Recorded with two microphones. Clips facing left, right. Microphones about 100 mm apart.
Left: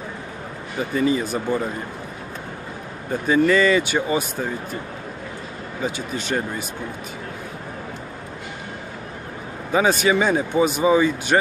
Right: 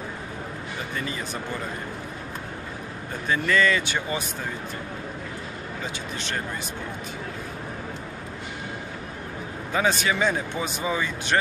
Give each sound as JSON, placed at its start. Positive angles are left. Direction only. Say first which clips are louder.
{"t": 0.9, "sound": "speech", "louder": "left 13 dB", "side_deg": 10}
{"t": 3.3, "sound": "speech", "louder": "left 6 dB", "side_deg": 10}
{"t": 5.9, "sound": "speech", "louder": "left 9 dB", "side_deg": 5}
{"t": 9.7, "sound": "speech", "louder": "left 6 dB", "side_deg": 10}